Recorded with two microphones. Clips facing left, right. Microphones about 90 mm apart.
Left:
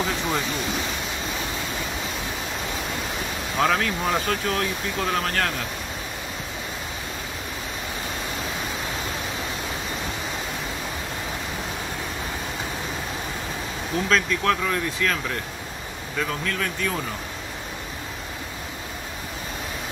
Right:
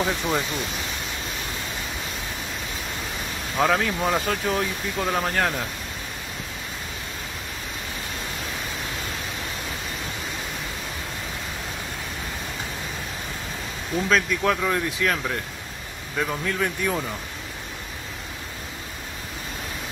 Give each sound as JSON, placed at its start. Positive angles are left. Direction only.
{"t": 3.5, "sound": "speech", "side_deg": -5}
{"t": 14.0, "sound": "speech", "side_deg": -5}
{"t": 16.2, "sound": "speech", "side_deg": -15}